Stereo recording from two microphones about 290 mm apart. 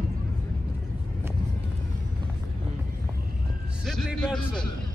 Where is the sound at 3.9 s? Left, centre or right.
Centre.